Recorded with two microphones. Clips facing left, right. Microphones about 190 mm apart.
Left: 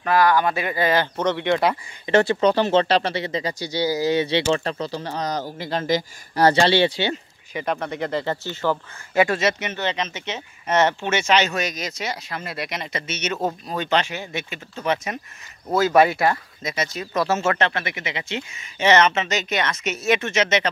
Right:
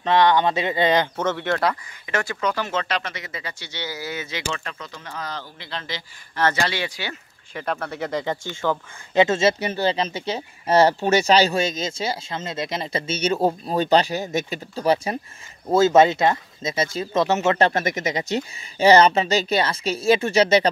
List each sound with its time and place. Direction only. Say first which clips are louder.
0.0 s speech: right 1 dB; 20° right (ahead or behind)
1.3 s speech: left 5 dB; 15° left (ahead or behind)
7.5 s speech: left 2 dB; 5° left (ahead or behind)
7.9 s speech: left 1 dB; 10° right (ahead or behind)
8.6 s speech: left 1 dB; 5° left (ahead or behind)
9.1 s speech: right 2 dB; 20° right (ahead or behind)
15.7 s speech: right 2 dB; 25° right (ahead or behind)
17.6 s speech: right 4 dB; 40° right (ahead or behind)